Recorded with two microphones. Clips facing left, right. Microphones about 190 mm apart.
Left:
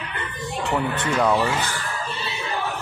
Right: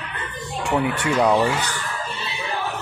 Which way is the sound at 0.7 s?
10° right (ahead or behind).